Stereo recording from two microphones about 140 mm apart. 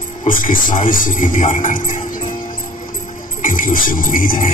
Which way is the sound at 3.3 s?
65° left (ahead or behind).